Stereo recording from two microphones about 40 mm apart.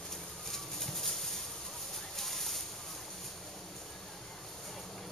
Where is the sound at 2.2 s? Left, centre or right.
Centre.